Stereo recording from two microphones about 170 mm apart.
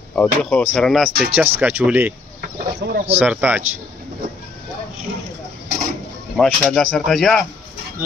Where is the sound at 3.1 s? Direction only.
10° right (ahead or behind).